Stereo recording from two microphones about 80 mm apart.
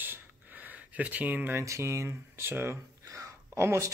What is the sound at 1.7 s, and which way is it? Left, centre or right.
Speech, right.